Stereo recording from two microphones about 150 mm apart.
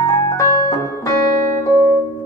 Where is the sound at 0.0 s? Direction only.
20° left (ahead or behind).